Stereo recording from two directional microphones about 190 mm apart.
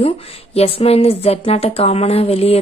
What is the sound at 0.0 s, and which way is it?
A woman's voice, 30° left (ahead or behind).